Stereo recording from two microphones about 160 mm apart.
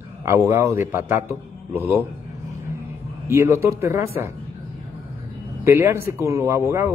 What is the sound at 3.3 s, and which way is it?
A man's voice, 15° right (ahead or behind).